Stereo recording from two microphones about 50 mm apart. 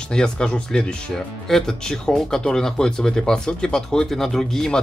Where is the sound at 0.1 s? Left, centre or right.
Centre.